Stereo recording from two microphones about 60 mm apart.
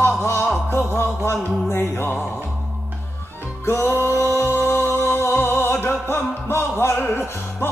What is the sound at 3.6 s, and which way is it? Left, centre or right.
Music, left.